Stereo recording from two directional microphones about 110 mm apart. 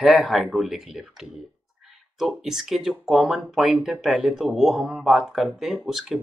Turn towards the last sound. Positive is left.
turn(degrees=-5)  # may be behind; listen again after turning